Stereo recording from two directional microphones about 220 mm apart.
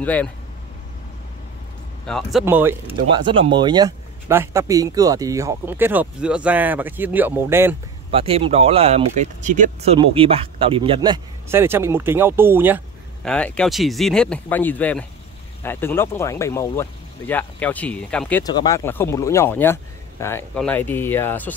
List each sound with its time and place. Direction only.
0.0 s speech: 5° left (ahead or behind)
2.0 s speech: centre (ahead or behind)
2.4 s speech: 10° right (ahead or behind)
3.2 s speech: 20° right (ahead or behind)
8.1 s speech: 25° right (ahead or behind); by 12.8 s 10° right (ahead or behind)
13.2 s speech: 5° left (ahead or behind)
18.4 s speech: 20° left (ahead or behind)